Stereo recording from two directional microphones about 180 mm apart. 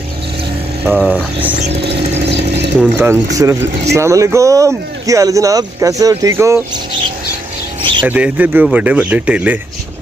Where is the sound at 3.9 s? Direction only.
15° right (ahead or behind).